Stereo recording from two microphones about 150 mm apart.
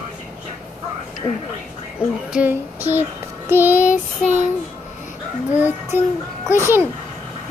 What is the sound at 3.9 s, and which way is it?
Child singing, 55° left (ahead or behind).